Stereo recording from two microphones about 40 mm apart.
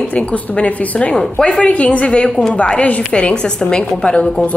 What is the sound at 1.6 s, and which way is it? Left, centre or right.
A woman's voice, left.